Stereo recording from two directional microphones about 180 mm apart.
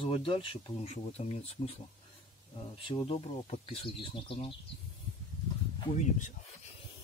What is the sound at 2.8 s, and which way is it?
Speech, 30° left (ahead or behind).